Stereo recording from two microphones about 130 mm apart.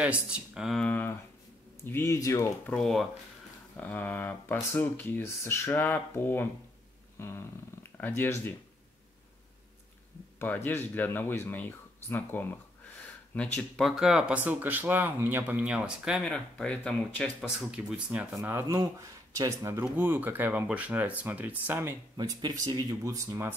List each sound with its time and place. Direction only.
0.0 s speech: 10° right (ahead or behind)
0.8 s speech: 15° left (ahead or behind)
2.6 s speech: 5° left (ahead or behind)
7.2 s purr: 20° left (ahead or behind)
8.0 s speech: 20° left (ahead or behind)
10.4 s speech: 15° left (ahead or behind); by 16.3 s 5° right (ahead or behind)
16.3 s speech: 5° left (ahead or behind)
17.6 s speech: 10° right (ahead or behind)
22.1 s speech: 30° right (ahead or behind)